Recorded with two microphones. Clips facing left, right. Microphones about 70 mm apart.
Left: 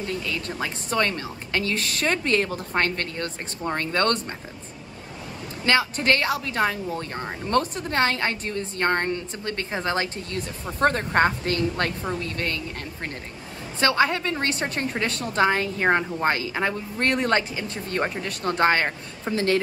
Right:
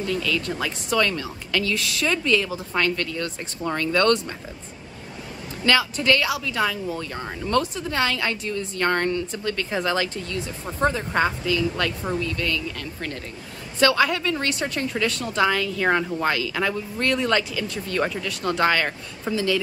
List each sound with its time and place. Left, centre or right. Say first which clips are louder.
0.0 s a woman's voice: right 4 dB; left
5.7 s a woman's voice: right 1 dB; left
10.8 s a woman's voice: left 2 dB; left
19.3 s a woman's voice: left 1 dB; left